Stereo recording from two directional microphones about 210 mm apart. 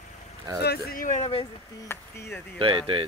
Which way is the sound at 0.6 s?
45° left (ahead or behind).